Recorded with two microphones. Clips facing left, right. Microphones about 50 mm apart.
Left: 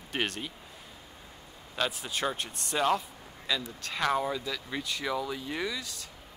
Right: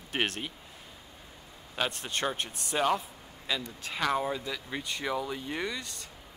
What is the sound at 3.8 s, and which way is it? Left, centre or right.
Speech, centre.